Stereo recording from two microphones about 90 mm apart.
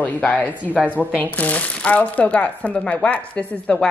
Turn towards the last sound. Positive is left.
turn(degrees=10)  # may be behind; listen again after turning